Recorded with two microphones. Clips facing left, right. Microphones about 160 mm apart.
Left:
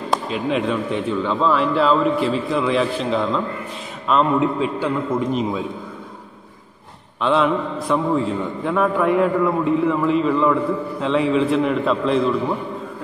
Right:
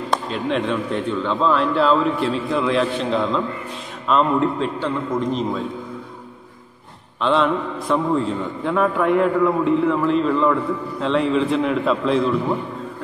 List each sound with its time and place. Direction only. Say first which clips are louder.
0.1 s a man's voice: left 1 dB; 5° left (ahead or behind)
7.2 s a man's voice: left 1 dB; 5° left (ahead or behind)